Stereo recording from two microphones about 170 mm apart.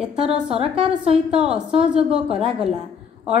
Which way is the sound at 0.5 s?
35° right (ahead or behind).